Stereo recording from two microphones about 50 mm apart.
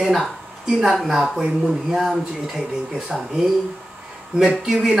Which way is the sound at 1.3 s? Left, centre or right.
Centre.